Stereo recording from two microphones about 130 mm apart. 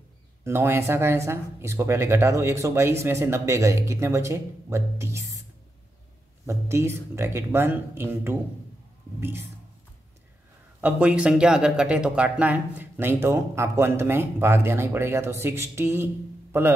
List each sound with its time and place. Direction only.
0.4 s speech: 20° right (ahead or behind)
6.4 s speech: 20° right (ahead or behind)
10.8 s speech: 10° right (ahead or behind)